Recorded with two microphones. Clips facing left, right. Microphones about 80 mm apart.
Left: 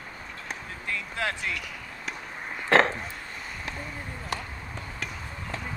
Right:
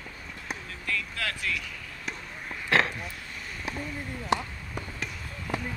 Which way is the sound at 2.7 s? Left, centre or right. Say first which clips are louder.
Left 4 dB; left.